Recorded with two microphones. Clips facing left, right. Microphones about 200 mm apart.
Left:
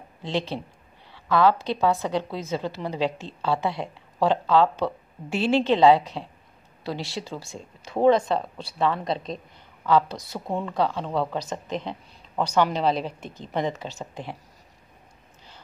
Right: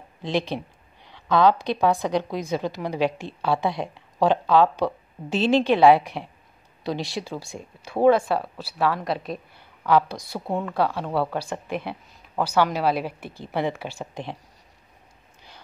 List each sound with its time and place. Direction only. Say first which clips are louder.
0.2 s a woman's voice: right 2 dB; 15° right (ahead or behind)
9.0 s a woman's voice: right 1 dB; 20° left (ahead or behind)
9.8 s a woman's voice: right 1 dB; 10° right (ahead or behind)